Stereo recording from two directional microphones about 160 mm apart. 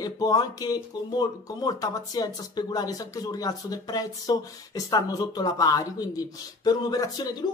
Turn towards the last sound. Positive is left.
turn(degrees=25)  # may be behind; listen again after turning